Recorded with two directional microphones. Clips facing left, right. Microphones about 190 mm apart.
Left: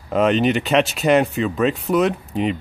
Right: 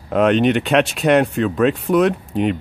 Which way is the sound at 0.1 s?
Centre (ahead or behind).